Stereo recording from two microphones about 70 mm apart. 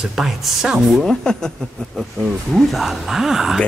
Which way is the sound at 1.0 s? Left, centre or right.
Centre.